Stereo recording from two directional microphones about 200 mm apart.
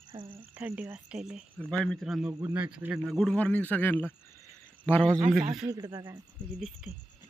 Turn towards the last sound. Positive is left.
turn(degrees=0)  # may be behind; listen again after turning